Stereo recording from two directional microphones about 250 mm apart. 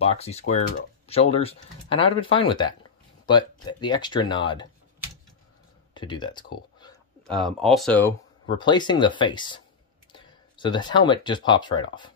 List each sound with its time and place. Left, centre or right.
0.0 s speech: left
5.9 s speech: centre
7.2 s speech: centre
8.5 s speech: centre